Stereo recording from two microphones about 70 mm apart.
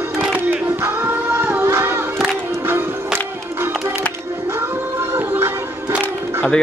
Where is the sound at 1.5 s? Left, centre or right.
Right.